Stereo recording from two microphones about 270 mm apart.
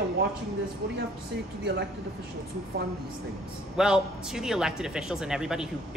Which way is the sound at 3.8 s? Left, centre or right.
Centre.